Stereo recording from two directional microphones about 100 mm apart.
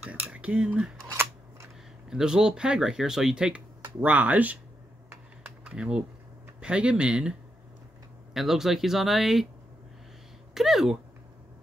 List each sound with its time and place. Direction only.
0.0 s speech: 10° right (ahead or behind)
2.0 s speech: 5° right (ahead or behind)
5.6 s speech: 10° right (ahead or behind)
10.5 s a sound: 5° right (ahead or behind)